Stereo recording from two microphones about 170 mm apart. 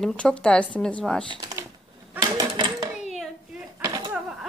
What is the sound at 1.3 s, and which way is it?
Speech, 20° right (ahead or behind).